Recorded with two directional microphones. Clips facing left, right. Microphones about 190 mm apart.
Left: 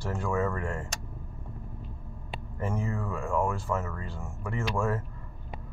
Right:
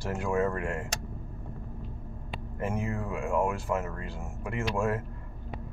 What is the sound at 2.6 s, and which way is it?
Speech, 15° right (ahead or behind).